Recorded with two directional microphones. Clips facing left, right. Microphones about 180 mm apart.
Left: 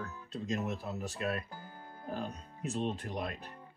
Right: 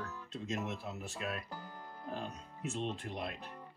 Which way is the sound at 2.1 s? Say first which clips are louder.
Left 4 dB; 35° left (ahead or behind).